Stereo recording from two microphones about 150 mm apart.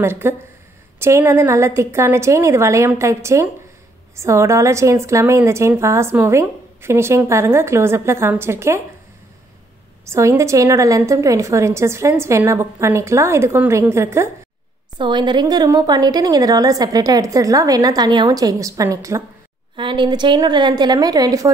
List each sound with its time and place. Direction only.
0.0 s a woman's voice: 15° right (ahead or behind)
10.0 s a woman's voice: 20° right (ahead or behind)
15.0 s a woman's voice: 30° right (ahead or behind)
19.7 s a woman's voice: 35° right (ahead or behind)